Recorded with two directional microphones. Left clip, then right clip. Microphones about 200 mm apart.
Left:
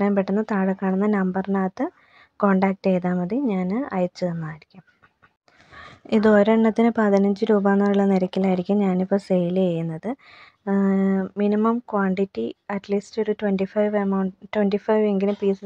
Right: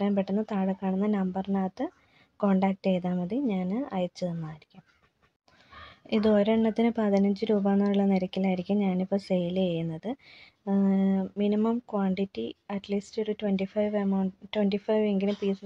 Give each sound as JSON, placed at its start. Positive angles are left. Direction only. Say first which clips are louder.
{"t": 0.0, "sound": "a woman's voice", "louder": "left 7 dB", "side_deg": 20}
{"t": 6.0, "sound": "speech", "louder": "left 7 dB", "side_deg": 20}